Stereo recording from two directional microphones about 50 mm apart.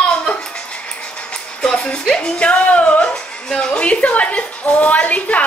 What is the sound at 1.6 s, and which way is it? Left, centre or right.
Music, centre.